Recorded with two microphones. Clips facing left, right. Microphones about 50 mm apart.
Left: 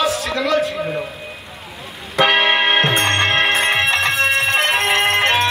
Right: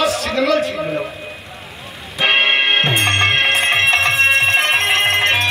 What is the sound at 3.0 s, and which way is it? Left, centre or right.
Music, right.